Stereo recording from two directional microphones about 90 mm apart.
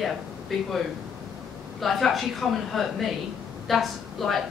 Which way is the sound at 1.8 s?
Centre (ahead or behind).